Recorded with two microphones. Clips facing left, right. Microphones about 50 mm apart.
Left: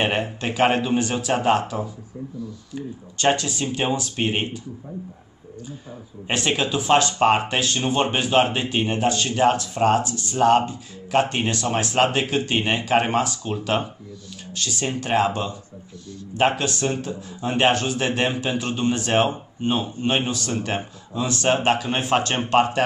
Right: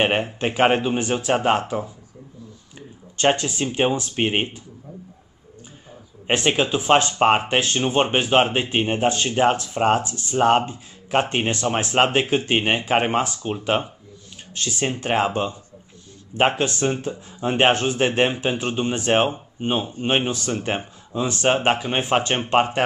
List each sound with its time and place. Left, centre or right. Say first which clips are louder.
0.0 s speech: right 2 dB; right
2.7 s speech: left 9 dB; right
6.2 s speech: right 3 dB; right